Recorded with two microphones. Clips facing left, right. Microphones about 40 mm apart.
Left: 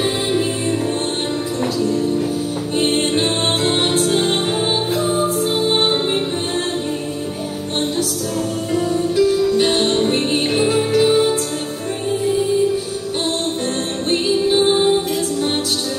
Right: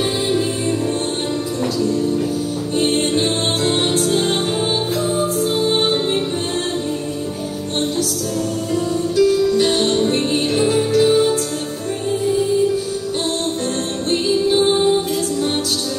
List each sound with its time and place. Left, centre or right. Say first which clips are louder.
2.8 s music: even; centre
8.7 s music: left 1 dB; centre
14.1 s music: even; centre